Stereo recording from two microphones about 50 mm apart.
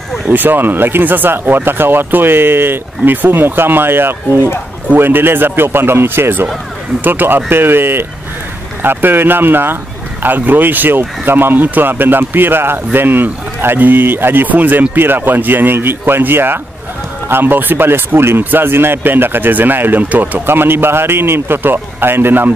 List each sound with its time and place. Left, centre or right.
0.3 s speech: right
18.4 s speech: right